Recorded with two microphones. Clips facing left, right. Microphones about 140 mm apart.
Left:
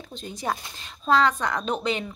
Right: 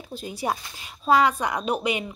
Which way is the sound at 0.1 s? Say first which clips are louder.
Right 2 dB; 10° right (ahead or behind).